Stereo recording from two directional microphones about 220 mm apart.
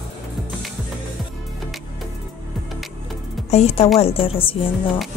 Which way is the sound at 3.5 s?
30° left (ahead or behind).